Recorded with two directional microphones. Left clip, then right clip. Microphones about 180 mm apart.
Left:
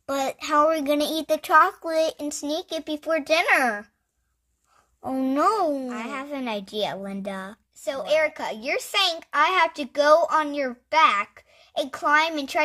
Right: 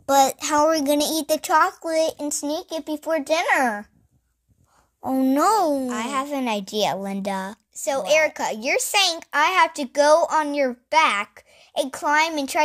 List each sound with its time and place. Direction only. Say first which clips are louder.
0.0 s a woman's voice: right 9 dB; 25° right (ahead or behind)
5.0 s a child's voice: right 3 dB; 15° right (ahead or behind)
7.9 s a child's voice: right 3 dB; 35° right (ahead or behind)